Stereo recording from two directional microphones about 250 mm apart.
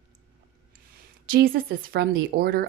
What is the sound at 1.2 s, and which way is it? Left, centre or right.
A woman's voice, right.